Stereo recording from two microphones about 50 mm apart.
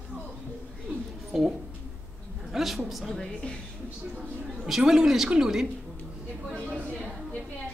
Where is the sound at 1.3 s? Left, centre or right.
Centre.